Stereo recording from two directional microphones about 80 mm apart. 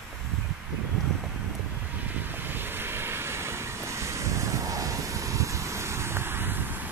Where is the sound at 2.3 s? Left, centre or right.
Right.